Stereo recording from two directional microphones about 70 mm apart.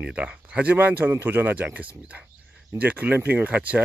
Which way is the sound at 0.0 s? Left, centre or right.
Centre.